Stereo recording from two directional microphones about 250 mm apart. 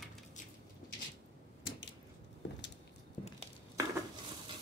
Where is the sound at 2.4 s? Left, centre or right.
Left.